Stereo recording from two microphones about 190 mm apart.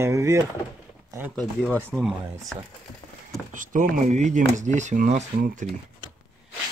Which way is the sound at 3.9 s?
40° right (ahead or behind).